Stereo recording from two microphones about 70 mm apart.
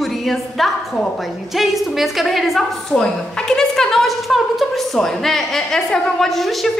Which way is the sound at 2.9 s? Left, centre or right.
Centre.